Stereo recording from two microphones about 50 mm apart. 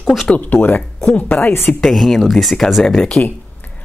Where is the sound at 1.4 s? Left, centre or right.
Left.